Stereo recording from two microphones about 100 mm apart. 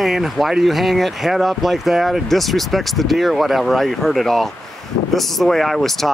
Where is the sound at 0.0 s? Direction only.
Centre (ahead or behind).